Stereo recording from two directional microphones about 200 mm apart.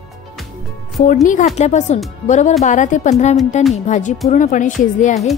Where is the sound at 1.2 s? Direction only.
35° left (ahead or behind).